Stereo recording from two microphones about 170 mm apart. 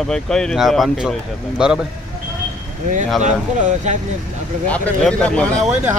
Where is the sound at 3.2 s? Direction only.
45° right (ahead or behind).